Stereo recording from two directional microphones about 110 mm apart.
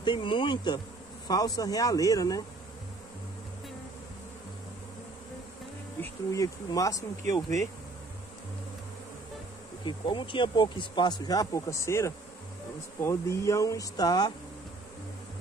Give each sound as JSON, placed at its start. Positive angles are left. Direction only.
{"t": 0.0, "sound": "speech", "side_deg": 50}
{"t": 1.2, "sound": "speech", "side_deg": 35}
{"t": 6.3, "sound": "speech", "side_deg": 30}
{"t": 9.8, "sound": "speech", "side_deg": 50}